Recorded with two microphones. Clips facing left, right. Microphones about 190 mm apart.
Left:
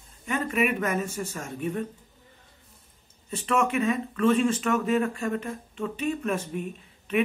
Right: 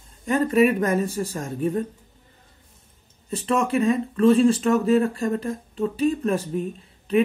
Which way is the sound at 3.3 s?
35° right (ahead or behind).